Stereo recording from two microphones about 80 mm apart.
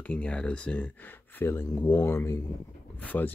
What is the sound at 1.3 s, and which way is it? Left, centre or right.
Speech, left.